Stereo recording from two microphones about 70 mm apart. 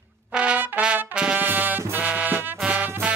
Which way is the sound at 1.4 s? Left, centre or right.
Right.